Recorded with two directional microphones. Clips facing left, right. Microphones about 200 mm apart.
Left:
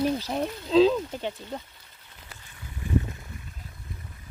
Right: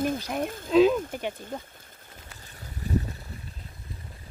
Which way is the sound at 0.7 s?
15° right (ahead or behind).